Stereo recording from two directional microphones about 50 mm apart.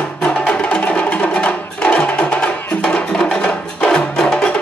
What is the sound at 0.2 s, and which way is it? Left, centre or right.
Music, left.